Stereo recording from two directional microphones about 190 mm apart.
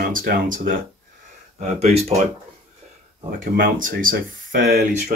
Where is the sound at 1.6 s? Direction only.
40° right (ahead or behind).